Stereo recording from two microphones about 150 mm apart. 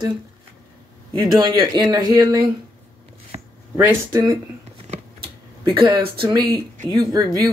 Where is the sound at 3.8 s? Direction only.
15° right (ahead or behind).